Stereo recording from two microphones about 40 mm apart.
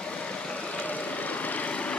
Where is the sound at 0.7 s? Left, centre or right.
Left.